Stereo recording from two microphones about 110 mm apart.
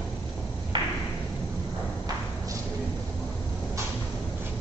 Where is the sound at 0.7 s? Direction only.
45° right (ahead or behind).